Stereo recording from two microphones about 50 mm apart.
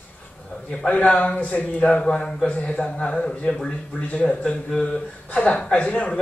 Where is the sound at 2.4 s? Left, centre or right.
Left.